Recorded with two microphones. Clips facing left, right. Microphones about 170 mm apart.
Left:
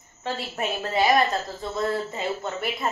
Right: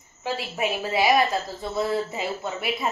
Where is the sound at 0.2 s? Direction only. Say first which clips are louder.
Right 2 dB; 5° right (ahead or behind).